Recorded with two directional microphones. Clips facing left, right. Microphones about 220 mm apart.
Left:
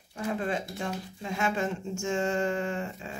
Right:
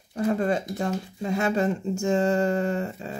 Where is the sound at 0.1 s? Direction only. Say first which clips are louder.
Right 7 dB; 40° right (ahead or behind).